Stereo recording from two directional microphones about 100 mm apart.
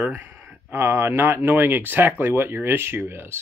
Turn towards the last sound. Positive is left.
turn(degrees=-25)  # may be behind; listen again after turning